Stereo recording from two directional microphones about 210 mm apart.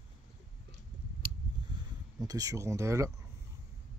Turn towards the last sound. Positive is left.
turn(degrees=-15)  # may be behind; listen again after turning